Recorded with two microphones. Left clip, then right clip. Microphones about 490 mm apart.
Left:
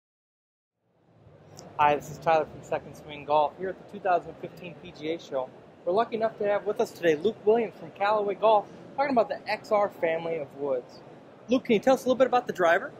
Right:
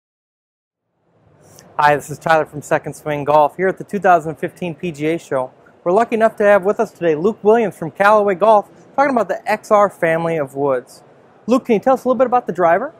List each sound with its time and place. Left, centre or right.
1.6 s a woman's voice: right